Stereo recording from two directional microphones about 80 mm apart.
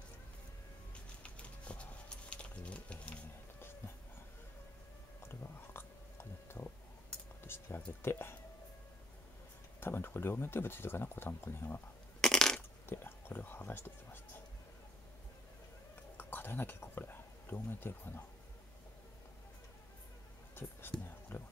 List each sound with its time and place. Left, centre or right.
1.2 s a sound: centre
5.2 s biting: left
7.4 s music: left
8.0 s speech: left
9.8 s speech: left
12.2 s a sound: centre
12.5 s speech: left
16.2 s speech: left
21.3 s speech: left